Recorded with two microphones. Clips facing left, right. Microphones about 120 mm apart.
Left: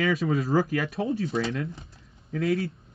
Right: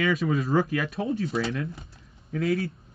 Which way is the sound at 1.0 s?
30° left (ahead or behind).